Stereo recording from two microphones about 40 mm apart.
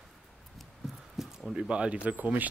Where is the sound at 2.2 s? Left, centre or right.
Right.